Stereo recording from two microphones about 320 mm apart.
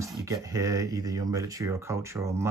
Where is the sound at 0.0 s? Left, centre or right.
Centre.